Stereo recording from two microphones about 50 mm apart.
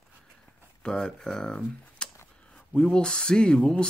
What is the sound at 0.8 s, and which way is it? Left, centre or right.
Speech, centre.